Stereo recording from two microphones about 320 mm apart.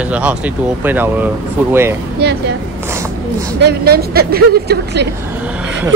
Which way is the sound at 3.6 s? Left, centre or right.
Right.